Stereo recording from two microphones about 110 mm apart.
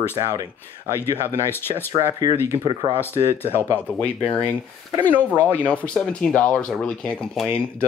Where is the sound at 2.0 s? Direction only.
30° right (ahead or behind).